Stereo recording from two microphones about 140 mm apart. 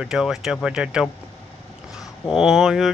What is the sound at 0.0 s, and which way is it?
Speech, 5° right (ahead or behind).